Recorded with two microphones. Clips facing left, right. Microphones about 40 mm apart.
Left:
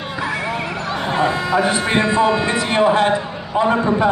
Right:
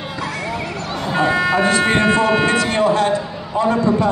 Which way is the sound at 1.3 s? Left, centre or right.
Right.